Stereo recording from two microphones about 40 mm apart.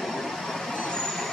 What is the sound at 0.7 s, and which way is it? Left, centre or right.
Vehicle, centre.